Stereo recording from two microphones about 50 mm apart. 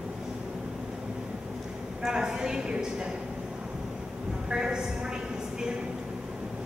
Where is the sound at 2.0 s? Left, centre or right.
Centre.